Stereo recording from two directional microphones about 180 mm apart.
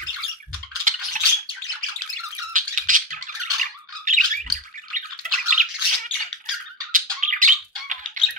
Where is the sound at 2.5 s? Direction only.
45° right (ahead or behind).